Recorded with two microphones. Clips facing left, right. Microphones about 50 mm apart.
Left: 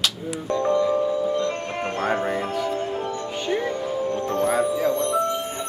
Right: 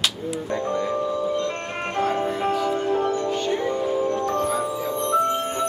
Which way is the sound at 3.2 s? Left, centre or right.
Centre.